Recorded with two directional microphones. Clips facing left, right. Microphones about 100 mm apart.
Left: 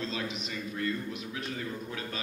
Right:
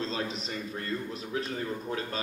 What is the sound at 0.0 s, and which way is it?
A man's voice, 35° right (ahead or behind).